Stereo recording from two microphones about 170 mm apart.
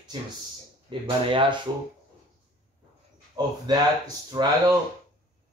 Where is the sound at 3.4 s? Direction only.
25° right (ahead or behind).